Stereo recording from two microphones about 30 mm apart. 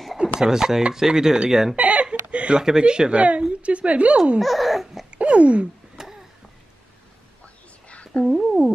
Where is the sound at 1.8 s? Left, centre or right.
Right.